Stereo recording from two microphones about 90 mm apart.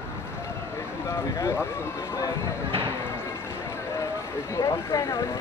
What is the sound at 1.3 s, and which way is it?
Speech, 35° left (ahead or behind).